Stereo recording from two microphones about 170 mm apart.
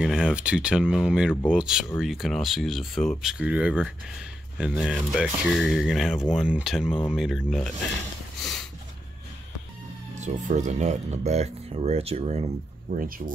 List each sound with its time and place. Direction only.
0.0 s speech: 5° right (ahead or behind)
10.2 s speech: 45° right (ahead or behind)